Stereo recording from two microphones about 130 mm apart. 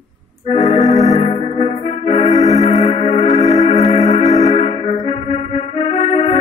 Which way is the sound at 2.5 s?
60° left (ahead or behind).